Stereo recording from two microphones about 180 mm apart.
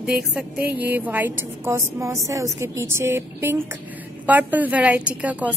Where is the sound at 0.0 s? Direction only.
5° right (ahead or behind).